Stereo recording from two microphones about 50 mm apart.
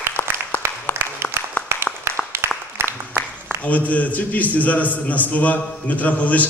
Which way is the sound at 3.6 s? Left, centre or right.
Left.